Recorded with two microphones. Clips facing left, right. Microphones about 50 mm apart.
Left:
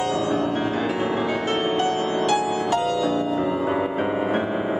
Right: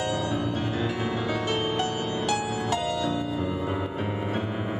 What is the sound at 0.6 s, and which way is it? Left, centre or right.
Music, left.